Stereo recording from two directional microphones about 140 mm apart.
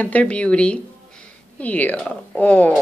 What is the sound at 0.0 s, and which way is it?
A woman's voice, 10° left (ahead or behind).